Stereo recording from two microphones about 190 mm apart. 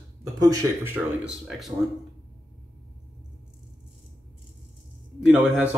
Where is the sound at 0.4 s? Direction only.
20° right (ahead or behind).